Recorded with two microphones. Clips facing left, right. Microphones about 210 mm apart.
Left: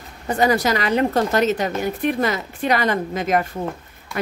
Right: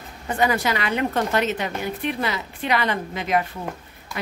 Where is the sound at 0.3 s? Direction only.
40° left (ahead or behind).